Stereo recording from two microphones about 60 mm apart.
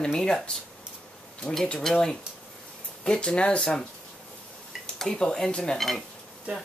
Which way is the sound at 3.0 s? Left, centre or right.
Centre.